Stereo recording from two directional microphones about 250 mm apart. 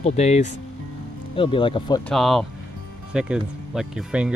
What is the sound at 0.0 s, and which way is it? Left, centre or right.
Speech, left.